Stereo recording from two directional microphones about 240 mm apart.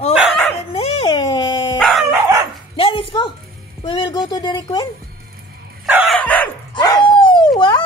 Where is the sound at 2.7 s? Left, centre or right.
Left.